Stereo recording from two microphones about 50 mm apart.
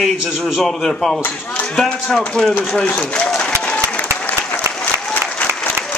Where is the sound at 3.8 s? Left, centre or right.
Left.